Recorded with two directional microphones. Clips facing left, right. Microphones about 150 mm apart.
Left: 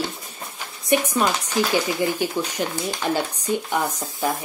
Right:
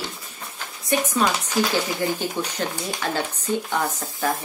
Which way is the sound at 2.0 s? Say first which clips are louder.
Left 2 dB; 10° left (ahead or behind).